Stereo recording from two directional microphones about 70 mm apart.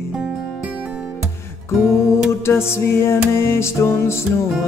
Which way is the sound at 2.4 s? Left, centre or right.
Left.